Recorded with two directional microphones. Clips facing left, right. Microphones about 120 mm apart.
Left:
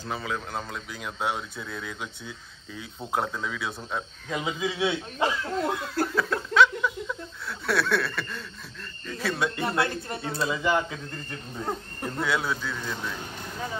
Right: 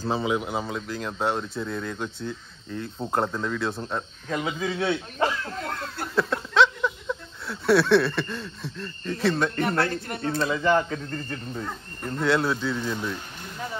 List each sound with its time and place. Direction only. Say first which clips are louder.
0.1 s speech: right 6 dB; 20° right (ahead or behind); by 4.0 s centre (ahead or behind)
4.3 s a sound: right 2 dB; 10° left (ahead or behind)
9.8 s speech: right 2 dB; 25° left (ahead or behind)
10.2 s speech: right 4 dB; 5° left (ahead or behind)
12.0 s speech: right 6 dB; centre (ahead or behind)